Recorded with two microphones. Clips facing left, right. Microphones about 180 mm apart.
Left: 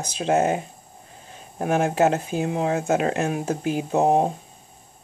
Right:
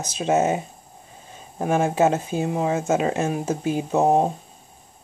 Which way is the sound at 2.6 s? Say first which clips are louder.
Even; 60° left (ahead or behind).